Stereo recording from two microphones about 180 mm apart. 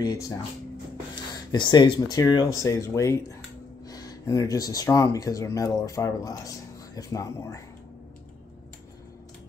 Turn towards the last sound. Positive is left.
turn(degrees=20)  # may be behind; listen again after turning